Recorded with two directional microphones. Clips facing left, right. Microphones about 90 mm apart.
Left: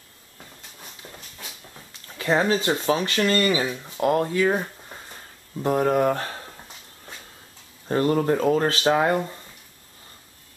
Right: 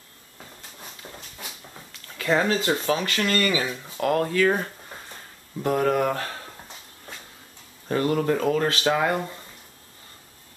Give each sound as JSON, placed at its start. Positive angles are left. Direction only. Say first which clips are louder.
{"t": 2.0, "sound": "a sound", "louder": "left 1 dB", "side_deg": 25}
{"t": 2.8, "sound": "speech", "louder": "left 2 dB", "side_deg": 25}
{"t": 4.5, "sound": "speech", "louder": "even", "side_deg": 5}
{"t": 5.6, "sound": "speech", "louder": "left 2 dB", "side_deg": 20}
{"t": 7.9, "sound": "speech", "louder": "left 2 dB", "side_deg": 30}